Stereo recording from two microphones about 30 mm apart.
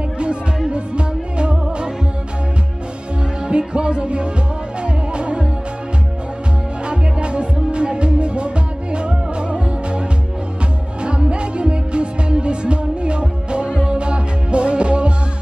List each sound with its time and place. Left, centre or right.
0.7 s music: right
3.4 s music: right
6.9 s music: right
13.7 s music: right
13.9 s music: right